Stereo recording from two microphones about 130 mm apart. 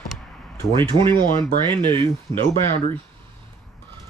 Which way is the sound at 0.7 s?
40° right (ahead or behind).